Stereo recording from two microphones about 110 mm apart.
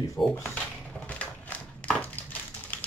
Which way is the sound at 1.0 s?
15° left (ahead or behind).